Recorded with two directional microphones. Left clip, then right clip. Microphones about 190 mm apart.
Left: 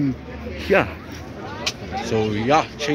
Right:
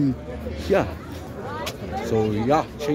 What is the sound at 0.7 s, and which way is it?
Speech, 5° left (ahead or behind).